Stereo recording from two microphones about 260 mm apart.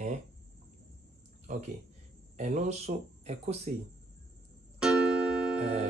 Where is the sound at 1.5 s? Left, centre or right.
Right.